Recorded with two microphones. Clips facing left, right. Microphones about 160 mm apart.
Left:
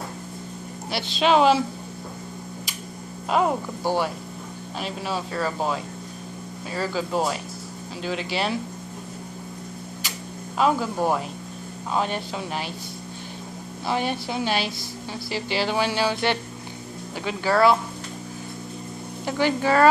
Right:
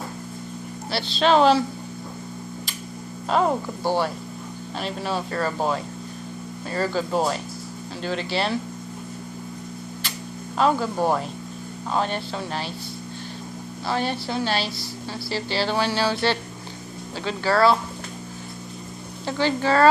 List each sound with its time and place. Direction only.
0.9 s speech: 10° left (ahead or behind)
3.3 s speech: 5° left (ahead or behind)
10.6 s speech: 5° left (ahead or behind)
13.8 s speech: 15° left (ahead or behind)
19.2 s speech: 15° left (ahead or behind)